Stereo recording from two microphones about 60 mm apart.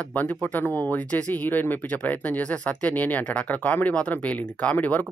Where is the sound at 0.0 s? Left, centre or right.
Left.